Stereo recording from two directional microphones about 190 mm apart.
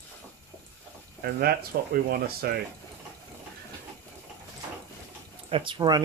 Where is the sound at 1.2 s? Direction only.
55° right (ahead or behind).